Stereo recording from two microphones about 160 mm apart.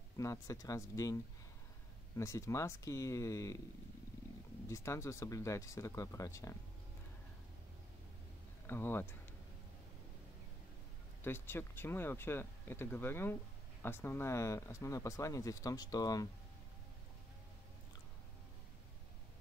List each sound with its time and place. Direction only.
0.2 s speech: 20° left (ahead or behind)
4.6 s speech: 20° left (ahead or behind)
8.6 s speech: 15° left (ahead or behind)
11.2 s speech: 15° left (ahead or behind)